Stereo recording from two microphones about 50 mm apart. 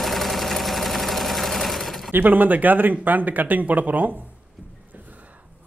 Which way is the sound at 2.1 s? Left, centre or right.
Right.